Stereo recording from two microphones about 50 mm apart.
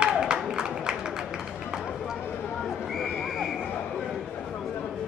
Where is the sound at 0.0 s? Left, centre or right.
Centre.